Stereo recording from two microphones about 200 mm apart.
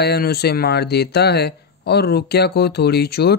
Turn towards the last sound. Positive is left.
turn(degrees=55)  # may be behind; listen again after turning